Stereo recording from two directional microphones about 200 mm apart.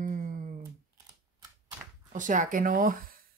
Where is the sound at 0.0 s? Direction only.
40° right (ahead or behind).